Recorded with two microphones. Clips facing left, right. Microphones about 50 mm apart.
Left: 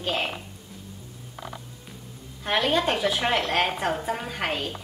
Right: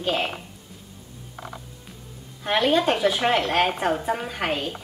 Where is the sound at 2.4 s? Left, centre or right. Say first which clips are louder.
Right 3 dB; centre.